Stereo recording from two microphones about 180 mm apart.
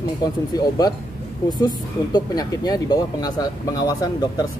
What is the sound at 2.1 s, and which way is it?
A man's voice, 20° left (ahead or behind).